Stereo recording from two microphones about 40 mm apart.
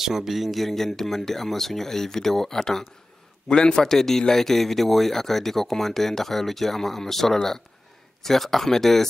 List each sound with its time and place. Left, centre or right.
0.0 s a man's voice: centre